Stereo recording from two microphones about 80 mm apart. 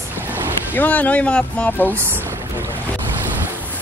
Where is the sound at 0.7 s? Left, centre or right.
Left.